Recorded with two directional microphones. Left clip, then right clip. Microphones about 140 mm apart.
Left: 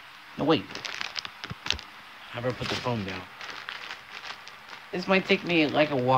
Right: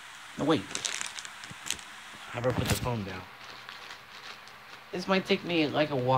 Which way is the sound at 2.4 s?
5° right (ahead or behind).